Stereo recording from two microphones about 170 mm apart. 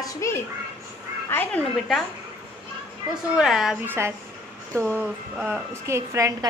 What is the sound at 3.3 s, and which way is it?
A woman's voice, 5° right (ahead or behind).